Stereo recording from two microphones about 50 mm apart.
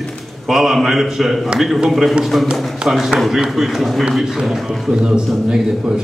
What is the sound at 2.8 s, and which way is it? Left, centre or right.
Speech, centre.